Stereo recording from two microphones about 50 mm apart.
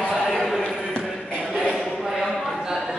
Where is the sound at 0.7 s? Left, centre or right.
Centre.